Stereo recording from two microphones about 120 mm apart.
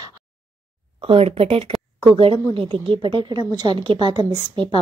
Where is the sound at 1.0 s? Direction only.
50° right (ahead or behind).